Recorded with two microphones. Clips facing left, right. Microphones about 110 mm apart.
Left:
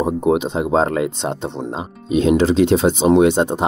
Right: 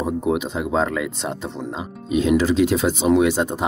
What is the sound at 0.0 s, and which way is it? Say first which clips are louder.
Speech: left 5 dB; 30° left (ahead or behind).